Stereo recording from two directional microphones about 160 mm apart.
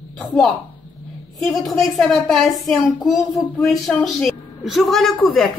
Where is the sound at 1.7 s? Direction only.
Centre (ahead or behind).